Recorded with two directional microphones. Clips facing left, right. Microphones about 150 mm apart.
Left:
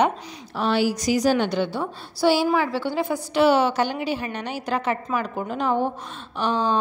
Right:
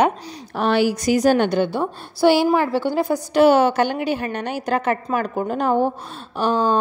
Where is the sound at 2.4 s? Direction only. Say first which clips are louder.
Right 4 dB; 45° right (ahead or behind).